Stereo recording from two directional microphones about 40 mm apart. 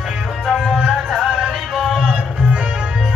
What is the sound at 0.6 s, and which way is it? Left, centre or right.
Music, centre.